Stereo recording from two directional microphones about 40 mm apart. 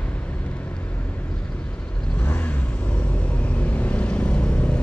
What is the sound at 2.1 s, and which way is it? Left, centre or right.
Vehicle, left.